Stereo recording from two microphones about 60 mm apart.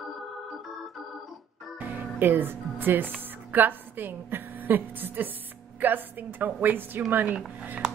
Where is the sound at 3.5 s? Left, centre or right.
Right.